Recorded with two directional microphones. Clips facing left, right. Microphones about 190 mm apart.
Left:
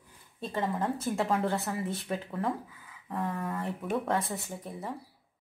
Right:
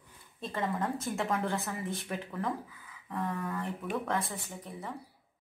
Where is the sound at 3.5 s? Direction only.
25° left (ahead or behind).